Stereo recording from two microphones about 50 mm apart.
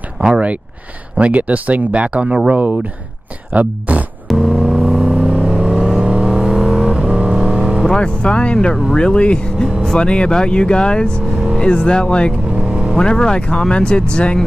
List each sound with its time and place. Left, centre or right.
0.2 s speech: right
4.3 s vehicle: centre
6.8 s vehicle: right
7.9 s speech: left
12.5 s vehicle: centre
12.9 s speech: centre